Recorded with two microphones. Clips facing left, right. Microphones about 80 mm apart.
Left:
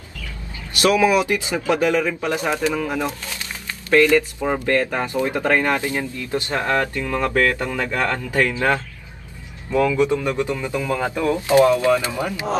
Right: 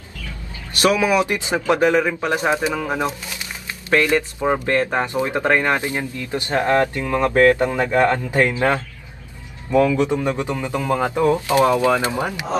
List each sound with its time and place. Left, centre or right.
0.7 s speech: right